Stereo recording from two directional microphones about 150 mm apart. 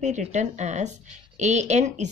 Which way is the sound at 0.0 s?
50° right (ahead or behind).